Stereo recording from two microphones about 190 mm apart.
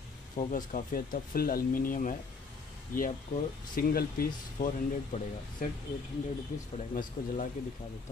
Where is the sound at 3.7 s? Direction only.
55° left (ahead or behind).